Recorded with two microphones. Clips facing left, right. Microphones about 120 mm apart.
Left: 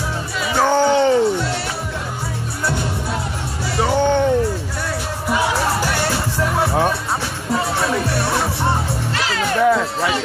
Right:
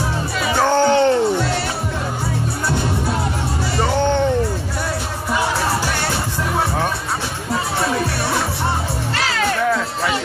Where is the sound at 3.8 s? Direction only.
10° left (ahead or behind).